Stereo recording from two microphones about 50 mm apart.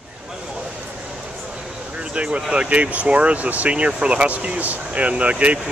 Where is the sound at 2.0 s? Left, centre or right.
Right.